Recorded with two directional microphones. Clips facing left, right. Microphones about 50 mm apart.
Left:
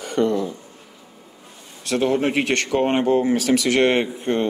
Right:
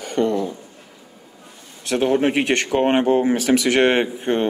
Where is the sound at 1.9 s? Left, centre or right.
Right.